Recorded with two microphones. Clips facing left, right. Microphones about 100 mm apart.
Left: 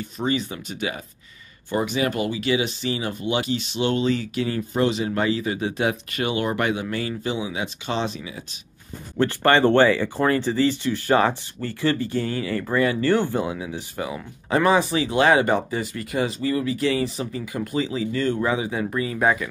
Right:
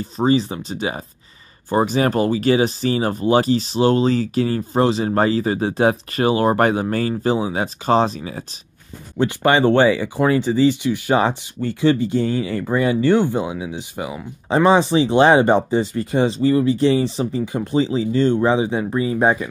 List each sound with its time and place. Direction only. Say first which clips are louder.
0.0 s speech: right 7 dB; 35° right (ahead or behind)
9.2 s speech: right 2 dB; 15° right (ahead or behind)